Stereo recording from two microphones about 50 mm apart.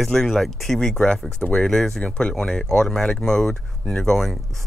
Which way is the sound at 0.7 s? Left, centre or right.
Centre.